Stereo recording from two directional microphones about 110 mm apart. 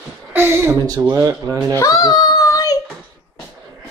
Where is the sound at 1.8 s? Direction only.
35° left (ahead or behind).